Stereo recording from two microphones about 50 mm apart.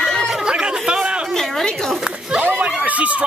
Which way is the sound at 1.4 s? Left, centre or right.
Centre.